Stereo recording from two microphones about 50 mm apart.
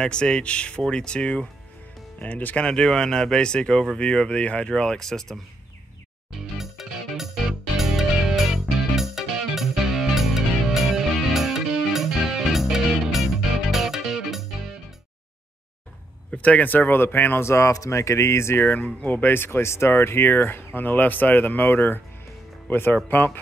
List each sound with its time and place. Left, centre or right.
0.0 s speech: centre
2.1 s speech: left
2.6 s speech: centre
6.6 s music: centre
16.3 s speech: left
17.5 s speech: left
18.9 s speech: left
19.3 s speech: left